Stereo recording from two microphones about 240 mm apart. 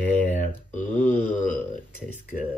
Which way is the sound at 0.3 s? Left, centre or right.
Left.